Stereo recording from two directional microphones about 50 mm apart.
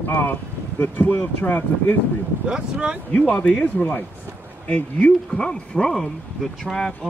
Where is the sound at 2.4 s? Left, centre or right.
Centre.